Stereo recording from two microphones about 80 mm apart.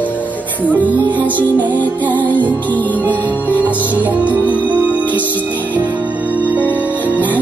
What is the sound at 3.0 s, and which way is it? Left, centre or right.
Music, right.